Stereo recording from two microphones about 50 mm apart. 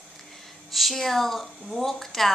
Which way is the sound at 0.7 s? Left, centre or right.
Centre.